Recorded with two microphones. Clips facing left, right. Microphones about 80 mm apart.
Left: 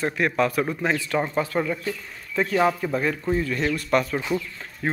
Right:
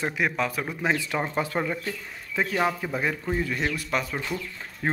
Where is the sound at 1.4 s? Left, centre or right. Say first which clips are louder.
Left 3 dB; right.